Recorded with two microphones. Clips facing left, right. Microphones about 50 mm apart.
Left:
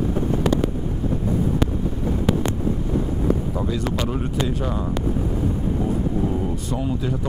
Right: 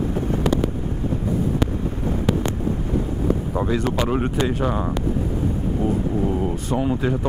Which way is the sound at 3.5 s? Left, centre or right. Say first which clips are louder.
Right 3 dB; right.